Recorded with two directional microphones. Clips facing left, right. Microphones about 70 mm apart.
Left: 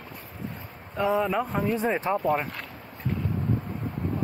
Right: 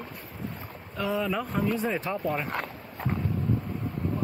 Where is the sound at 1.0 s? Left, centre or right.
Left.